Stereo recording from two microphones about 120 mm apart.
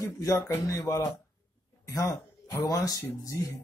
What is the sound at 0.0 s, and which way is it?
Speech, 30° left (ahead or behind).